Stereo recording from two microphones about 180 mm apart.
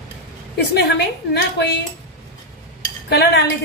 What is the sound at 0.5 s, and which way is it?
A woman's voice, 65° left (ahead or behind).